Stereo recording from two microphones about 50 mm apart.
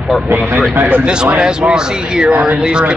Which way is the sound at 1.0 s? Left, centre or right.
Centre.